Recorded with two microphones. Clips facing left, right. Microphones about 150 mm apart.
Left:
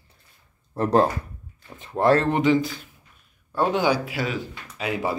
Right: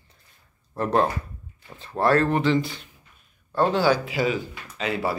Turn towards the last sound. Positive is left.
turn(degrees=15)  # may be behind; listen again after turning